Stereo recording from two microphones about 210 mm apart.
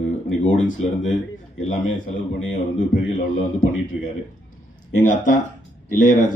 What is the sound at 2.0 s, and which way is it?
Speech, 35° left (ahead or behind).